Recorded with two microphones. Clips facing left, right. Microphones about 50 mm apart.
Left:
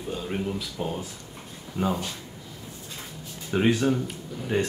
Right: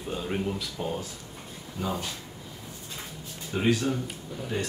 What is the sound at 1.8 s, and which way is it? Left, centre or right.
Speech, left.